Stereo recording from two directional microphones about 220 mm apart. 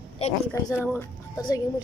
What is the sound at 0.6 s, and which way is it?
Speech, 10° left (ahead or behind).